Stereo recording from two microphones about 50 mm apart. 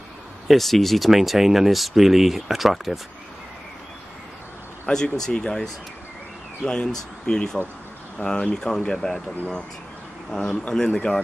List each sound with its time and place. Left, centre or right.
0.5 s speech: centre
4.8 s speech: centre
10.3 s speech: centre